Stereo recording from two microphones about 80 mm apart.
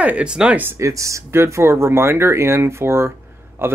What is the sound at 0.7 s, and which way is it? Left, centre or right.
Speech, right.